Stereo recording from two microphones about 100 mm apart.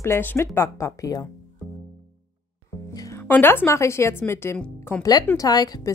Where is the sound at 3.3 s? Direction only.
20° left (ahead or behind).